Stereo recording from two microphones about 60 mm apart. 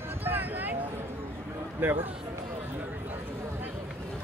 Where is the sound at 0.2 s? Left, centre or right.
Right.